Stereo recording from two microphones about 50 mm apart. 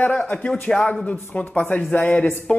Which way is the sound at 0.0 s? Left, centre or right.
Left.